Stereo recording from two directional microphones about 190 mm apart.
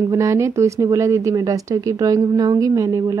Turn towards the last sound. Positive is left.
turn(degrees=-15)  # may be behind; listen again after turning